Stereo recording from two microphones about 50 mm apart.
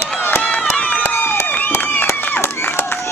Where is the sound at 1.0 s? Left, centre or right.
Left.